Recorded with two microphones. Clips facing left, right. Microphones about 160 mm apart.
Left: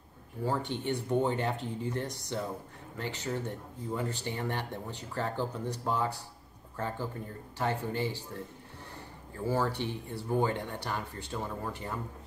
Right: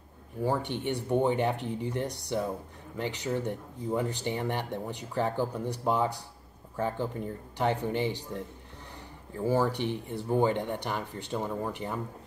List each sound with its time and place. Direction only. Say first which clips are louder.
0.4 s speech: right 3 dB; 15° right (ahead or behind)
9.4 s speech: right 4 dB; 15° right (ahead or behind)